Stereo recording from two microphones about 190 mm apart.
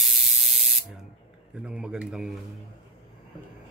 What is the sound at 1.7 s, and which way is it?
Speech, 5° right (ahead or behind).